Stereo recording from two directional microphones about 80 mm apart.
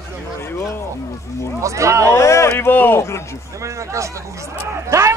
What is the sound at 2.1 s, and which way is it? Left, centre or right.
Speech, left.